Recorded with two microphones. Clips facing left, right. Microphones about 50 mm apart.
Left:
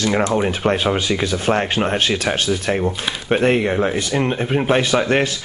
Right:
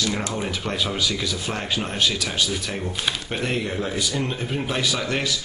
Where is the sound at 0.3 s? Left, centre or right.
Left.